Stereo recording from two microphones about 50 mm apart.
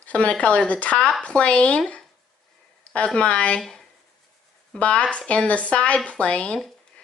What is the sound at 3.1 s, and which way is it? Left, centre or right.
Speech, left.